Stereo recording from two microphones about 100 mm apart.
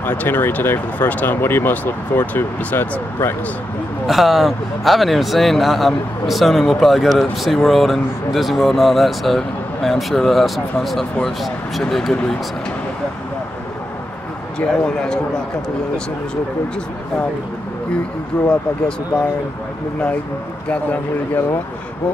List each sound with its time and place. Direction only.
0.0 s speech: 15° left (ahead or behind)
4.1 s speech: centre (ahead or behind)
14.6 s speech: 10° left (ahead or behind)
18.3 s speech: 10° left (ahead or behind)